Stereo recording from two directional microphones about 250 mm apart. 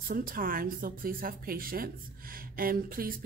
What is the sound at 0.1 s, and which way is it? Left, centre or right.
Speech, right.